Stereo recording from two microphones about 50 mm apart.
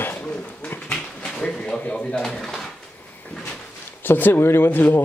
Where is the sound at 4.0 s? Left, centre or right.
Left.